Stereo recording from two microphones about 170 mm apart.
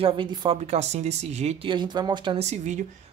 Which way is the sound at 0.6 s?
40° right (ahead or behind).